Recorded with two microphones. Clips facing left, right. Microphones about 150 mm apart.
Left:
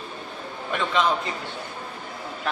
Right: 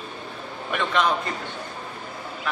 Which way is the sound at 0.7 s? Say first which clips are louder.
Even; centre (ahead or behind).